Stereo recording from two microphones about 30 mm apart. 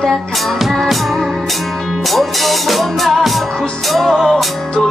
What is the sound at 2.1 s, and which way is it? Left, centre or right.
Music, centre.